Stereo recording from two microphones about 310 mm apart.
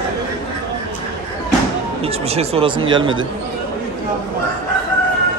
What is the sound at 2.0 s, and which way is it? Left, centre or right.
A man's voice, centre.